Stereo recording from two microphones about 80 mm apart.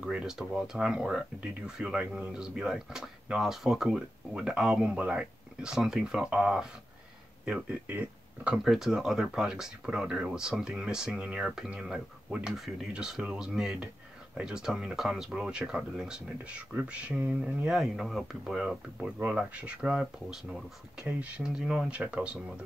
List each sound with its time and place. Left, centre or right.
0.0 s speech: centre
7.8 s speech: right
8.6 s speech: centre
11.4 s speech: centre
17.6 s speech: centre
18.9 s speech: centre